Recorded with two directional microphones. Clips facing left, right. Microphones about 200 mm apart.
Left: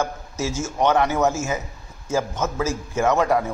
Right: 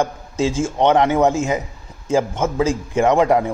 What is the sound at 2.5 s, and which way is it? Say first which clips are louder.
Speech: right 8 dB; 15° right (ahead or behind).